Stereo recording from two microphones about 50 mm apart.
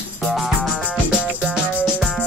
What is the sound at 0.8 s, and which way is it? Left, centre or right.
Music, left.